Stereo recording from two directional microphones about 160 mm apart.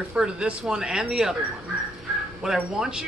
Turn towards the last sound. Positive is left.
turn(degrees=-5)  # may be behind; listen again after turning